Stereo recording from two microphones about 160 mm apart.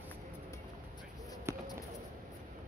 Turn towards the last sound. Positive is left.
turn(degrees=-15)  # may be behind; listen again after turning